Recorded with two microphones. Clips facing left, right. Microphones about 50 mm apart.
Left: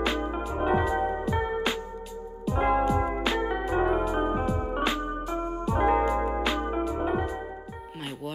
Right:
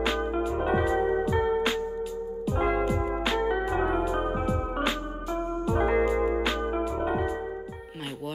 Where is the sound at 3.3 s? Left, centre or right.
Centre.